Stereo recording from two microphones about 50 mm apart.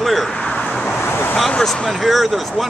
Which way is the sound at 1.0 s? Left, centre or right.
Left.